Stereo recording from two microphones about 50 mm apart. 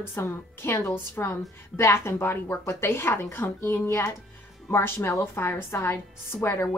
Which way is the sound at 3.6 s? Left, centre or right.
Left.